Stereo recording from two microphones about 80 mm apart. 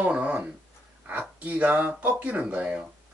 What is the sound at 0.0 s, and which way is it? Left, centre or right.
Speech, centre.